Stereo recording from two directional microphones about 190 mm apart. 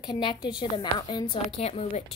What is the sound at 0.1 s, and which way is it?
A woman's voice, 25° left (ahead or behind).